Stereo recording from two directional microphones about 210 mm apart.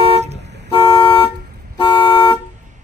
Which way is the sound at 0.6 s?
25° left (ahead or behind).